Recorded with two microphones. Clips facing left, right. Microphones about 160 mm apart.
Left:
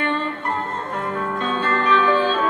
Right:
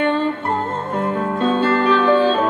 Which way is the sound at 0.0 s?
35° right (ahead or behind).